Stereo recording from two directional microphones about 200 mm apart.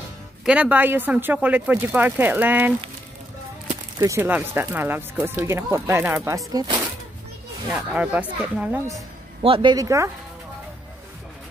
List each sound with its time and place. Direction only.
0.5 s speech: 5° right (ahead or behind)
4.0 s speech: 15° right (ahead or behind)
7.7 s speech: 5° right (ahead or behind)
9.4 s speech: 25° right (ahead or behind)